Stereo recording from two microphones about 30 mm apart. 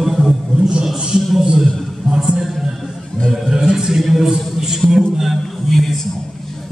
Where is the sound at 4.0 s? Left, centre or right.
Centre.